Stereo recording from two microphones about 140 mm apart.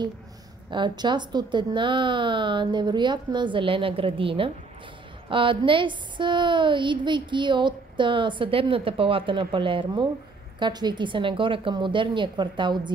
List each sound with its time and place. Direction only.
0.7 s a woman's voice: 35° right (ahead or behind)